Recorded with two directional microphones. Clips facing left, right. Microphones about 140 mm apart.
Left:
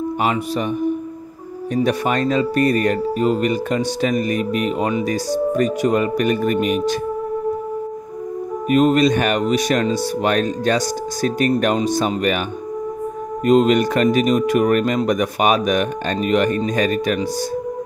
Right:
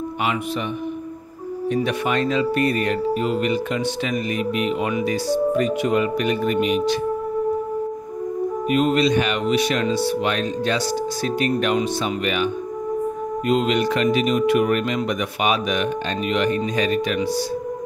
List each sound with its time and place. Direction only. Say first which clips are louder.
1.7 s speech: left 3 dB; 40° left (ahead or behind)
8.6 s speech: left 5 dB; 45° left (ahead or behind)
13.5 s speech: left 6 dB; 45° left (ahead or behind)